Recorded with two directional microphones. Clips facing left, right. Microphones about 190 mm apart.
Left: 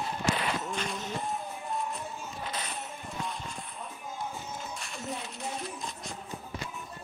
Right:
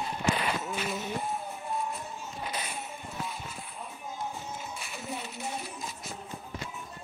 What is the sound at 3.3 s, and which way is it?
Vehicle, 5° right (ahead or behind).